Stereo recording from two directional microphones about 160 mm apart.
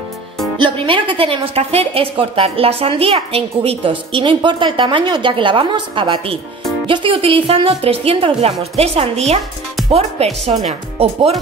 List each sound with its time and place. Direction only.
0.6 s a woman's voice: 30° right (ahead or behind)